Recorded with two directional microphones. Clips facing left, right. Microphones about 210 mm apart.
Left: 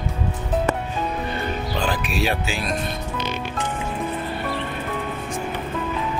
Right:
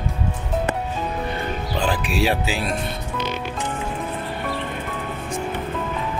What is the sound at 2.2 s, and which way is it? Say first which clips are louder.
Speech: right 4 dB; 30° right (ahead or behind).